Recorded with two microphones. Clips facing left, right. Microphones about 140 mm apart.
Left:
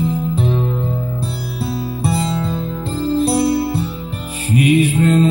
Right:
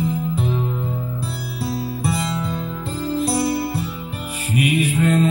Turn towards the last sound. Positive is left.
turn(degrees=30)  # may be behind; listen again after turning